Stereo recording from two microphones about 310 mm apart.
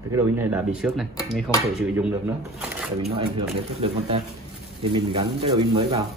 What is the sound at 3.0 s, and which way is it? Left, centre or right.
A man's voice, centre.